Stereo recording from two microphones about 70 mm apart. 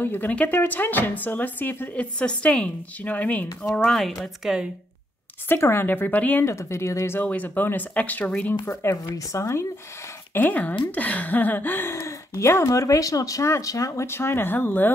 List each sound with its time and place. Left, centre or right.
0.0 s speech: left
2.1 s speech: centre
3.6 s speech: centre
5.5 s speech: left
6.4 s speech: left
7.2 s speech: left
8.6 s speech: left
10.3 s speech: left